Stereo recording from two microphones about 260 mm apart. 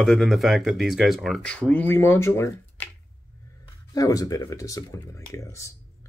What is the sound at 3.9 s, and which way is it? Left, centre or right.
Speech, centre.